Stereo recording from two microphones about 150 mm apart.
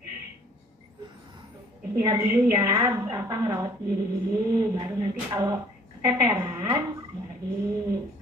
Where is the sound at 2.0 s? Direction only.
20° right (ahead or behind).